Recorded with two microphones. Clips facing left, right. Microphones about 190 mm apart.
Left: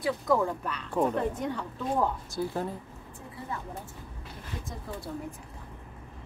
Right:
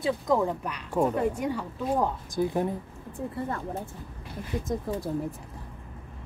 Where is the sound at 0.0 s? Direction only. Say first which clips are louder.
Right 1 dB; 20° right (ahead or behind).